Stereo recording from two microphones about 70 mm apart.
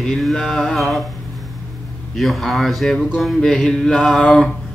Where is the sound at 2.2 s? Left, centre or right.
Centre.